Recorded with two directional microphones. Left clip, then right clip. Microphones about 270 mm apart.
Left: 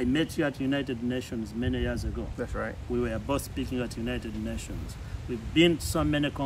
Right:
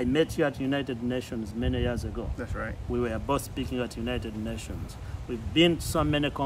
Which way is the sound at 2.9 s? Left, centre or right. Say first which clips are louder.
Right 2 dB; centre.